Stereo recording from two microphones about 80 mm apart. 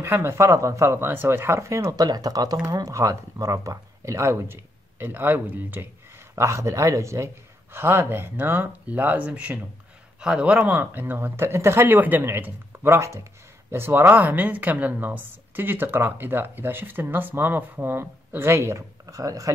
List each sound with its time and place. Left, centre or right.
0.0 s speech: right
1.9 s speech: right
6.3 s a woman's voice: right; by 10.6 s centre
10.6 s a woman's voice: right